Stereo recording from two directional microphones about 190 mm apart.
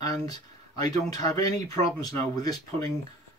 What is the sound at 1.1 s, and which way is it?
Speech, 20° left (ahead or behind).